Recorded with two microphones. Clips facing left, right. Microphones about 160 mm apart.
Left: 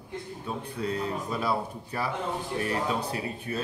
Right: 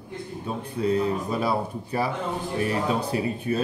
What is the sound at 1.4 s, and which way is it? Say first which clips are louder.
Speech: right 3 dB; 25° right (ahead or behind).